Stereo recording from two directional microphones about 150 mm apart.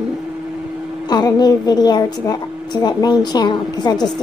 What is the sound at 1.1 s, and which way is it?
A woman's voice, 25° left (ahead or behind).